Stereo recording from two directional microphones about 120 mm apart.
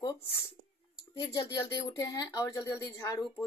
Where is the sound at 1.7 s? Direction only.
35° left (ahead or behind).